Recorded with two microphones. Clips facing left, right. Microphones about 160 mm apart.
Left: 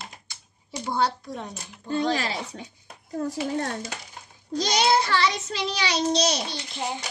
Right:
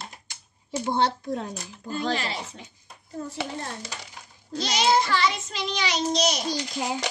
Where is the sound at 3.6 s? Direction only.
65° left (ahead or behind).